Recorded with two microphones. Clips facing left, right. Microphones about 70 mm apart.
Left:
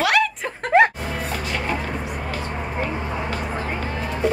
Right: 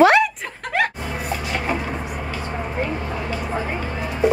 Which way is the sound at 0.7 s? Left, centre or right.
Left.